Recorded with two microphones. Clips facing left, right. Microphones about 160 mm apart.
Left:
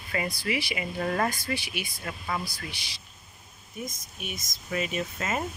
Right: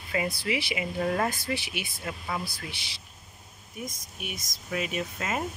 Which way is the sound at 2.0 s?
10° right (ahead or behind).